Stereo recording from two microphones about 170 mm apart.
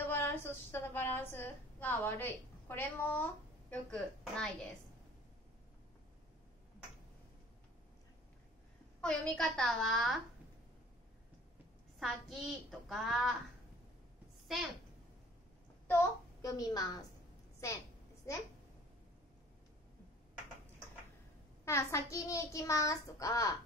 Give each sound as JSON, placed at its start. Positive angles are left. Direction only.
{"t": 0.1, "sound": "a woman's voice", "side_deg": 15}
{"t": 9.0, "sound": "a woman's voice", "side_deg": 5}
{"t": 12.0, "sound": "a woman's voice", "side_deg": 0}
{"t": 15.9, "sound": "child singing", "side_deg": 15}
{"t": 17.6, "sound": "a woman's voice", "side_deg": 20}
{"t": 21.6, "sound": "child singing", "side_deg": 15}